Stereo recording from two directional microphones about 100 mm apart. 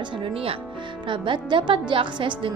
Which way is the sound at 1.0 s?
55° right (ahead or behind).